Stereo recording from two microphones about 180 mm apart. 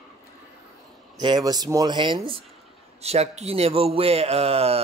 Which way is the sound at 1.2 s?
25° right (ahead or behind).